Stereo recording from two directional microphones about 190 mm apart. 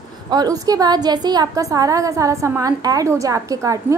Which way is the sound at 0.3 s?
20° right (ahead or behind).